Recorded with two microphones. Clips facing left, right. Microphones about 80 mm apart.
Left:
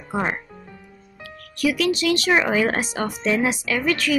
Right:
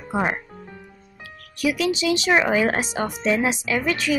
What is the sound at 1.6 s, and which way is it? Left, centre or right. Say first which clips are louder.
Speech: left 1 dB; centre.